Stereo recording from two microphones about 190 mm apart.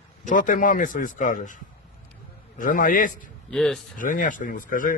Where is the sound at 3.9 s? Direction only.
45° left (ahead or behind).